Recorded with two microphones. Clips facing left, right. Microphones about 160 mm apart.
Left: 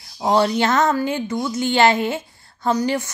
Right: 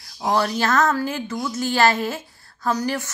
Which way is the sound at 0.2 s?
20° left (ahead or behind).